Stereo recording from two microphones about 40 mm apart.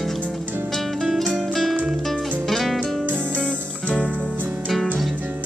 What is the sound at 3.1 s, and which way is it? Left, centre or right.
Music, right.